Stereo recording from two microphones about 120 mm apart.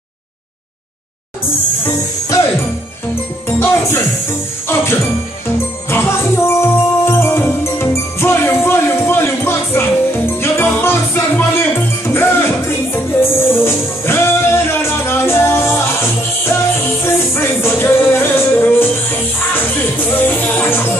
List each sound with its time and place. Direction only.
3.4 s music: 20° left (ahead or behind)
5.9 s music: 20° left (ahead or behind)
20.2 s music: 15° left (ahead or behind)